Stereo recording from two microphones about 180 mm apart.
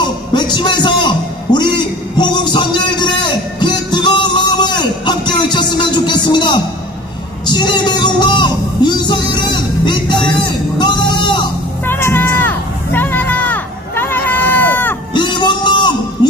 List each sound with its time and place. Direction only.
0.0 s a sound: 25° left (ahead or behind)
3.3 s music: 25° left (ahead or behind)
7.4 s speech: 25° left (ahead or behind)
10.8 s music: 25° left (ahead or behind)
11.8 s a sound: 10° left (ahead or behind)
15.1 s music: 25° left (ahead or behind)